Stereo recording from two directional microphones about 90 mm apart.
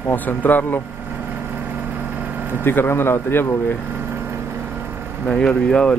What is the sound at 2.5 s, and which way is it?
Speech, 25° left (ahead or behind).